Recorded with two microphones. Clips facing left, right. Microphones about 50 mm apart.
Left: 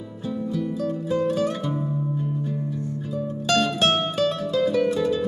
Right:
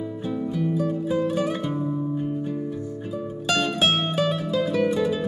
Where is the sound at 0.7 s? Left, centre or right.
Centre.